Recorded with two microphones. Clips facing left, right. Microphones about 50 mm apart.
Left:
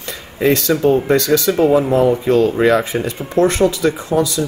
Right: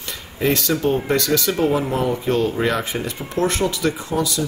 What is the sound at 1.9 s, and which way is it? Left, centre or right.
Speech, left.